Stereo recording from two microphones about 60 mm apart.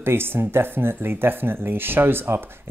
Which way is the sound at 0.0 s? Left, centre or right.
Right.